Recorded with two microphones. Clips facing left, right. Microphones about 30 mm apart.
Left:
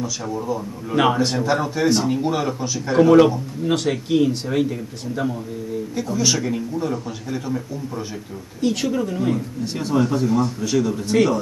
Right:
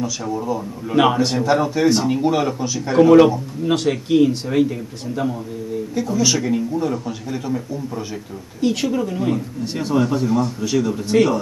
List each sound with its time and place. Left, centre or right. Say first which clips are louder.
0.0 s a man's voice: right 2 dB; centre